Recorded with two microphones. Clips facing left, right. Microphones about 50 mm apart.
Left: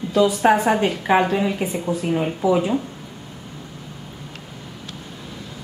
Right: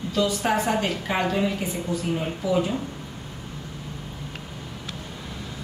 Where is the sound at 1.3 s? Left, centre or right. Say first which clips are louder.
Left 4 dB; centre.